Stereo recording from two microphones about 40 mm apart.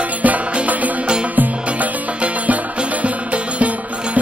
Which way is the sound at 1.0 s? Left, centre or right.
Right.